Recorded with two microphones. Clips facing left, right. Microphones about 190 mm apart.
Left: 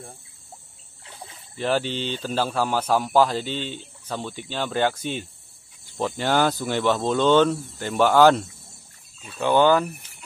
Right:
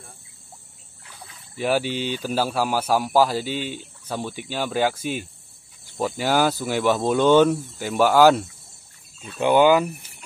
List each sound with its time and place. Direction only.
1.0 s trickle: 25° left (ahead or behind)
1.6 s speech: 10° right (ahead or behind)